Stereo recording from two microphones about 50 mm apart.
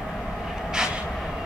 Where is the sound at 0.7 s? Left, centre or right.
Centre.